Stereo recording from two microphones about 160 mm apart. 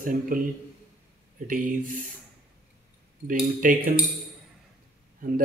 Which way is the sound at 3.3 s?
60° right (ahead or behind).